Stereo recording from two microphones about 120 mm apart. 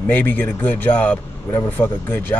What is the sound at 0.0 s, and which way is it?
A man's voice, 15° left (ahead or behind).